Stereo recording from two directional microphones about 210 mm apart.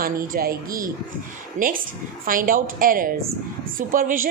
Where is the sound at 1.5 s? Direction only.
40° right (ahead or behind).